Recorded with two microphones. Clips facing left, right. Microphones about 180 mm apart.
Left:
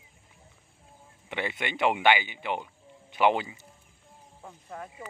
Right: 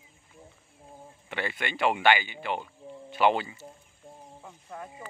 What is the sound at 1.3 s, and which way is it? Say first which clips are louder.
Speech: left 1 dB; 20° left (ahead or behind).